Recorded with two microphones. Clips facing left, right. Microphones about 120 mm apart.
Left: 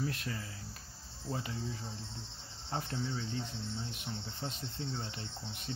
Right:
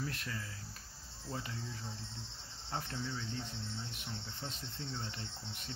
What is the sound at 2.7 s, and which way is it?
Speech, 25° left (ahead or behind).